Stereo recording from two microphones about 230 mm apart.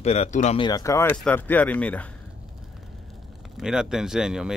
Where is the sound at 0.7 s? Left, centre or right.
Centre.